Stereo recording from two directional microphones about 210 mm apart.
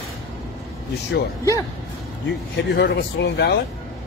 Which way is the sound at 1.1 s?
50° left (ahead or behind).